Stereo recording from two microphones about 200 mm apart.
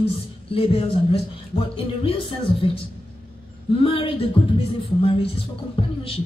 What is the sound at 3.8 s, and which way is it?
A man's voice, 30° left (ahead or behind).